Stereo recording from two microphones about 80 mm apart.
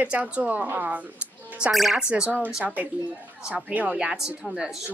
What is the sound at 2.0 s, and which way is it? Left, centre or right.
A woman's voice, centre.